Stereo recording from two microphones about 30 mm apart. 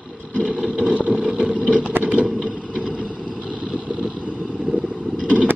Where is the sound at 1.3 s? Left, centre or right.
Right.